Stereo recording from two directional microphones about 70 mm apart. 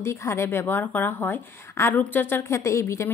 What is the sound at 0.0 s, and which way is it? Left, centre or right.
A woman's voice, left.